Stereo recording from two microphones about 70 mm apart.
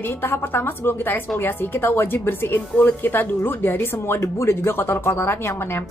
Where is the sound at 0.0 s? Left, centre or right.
Left.